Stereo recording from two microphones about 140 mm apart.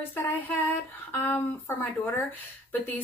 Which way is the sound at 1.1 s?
15° left (ahead or behind).